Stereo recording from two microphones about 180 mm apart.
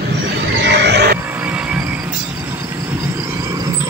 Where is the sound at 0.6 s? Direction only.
70° right (ahead or behind).